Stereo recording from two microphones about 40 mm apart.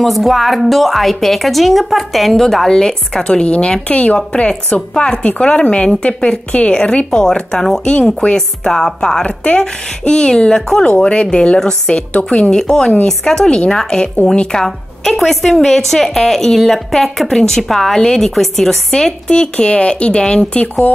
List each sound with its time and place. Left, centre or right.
0.0 s a woman's voice: centre; by 3.7 s left
3.9 s a woman's voice: left
6.7 s a woman's voice: centre
9.2 s a woman's voice: left
14.5 s a woman's voice: centre